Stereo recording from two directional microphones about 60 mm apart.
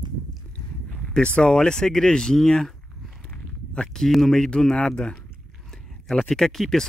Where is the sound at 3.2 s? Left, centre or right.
Left.